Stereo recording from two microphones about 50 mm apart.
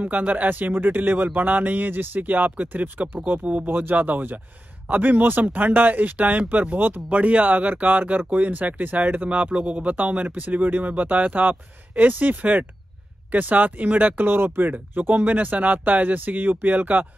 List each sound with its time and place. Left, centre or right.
0.0 s speech: right
14.7 s speech: right